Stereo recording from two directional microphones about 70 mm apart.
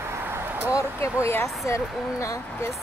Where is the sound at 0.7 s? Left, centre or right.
Left.